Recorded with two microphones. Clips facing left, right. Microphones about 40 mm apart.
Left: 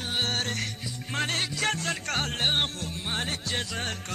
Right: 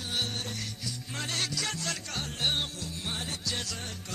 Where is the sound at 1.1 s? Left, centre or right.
Left.